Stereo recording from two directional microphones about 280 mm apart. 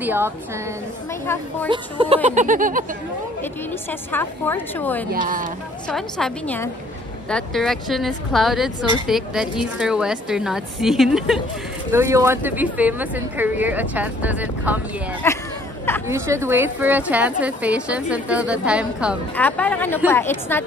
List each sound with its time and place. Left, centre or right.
0.0 s speech: centre
1.2 s a woman's voice: centre
1.7 s speech: centre
2.2 s a sound: right
4.1 s a woman's voice: centre
15.2 s speech: centre
16.1 s a woman's voice: centre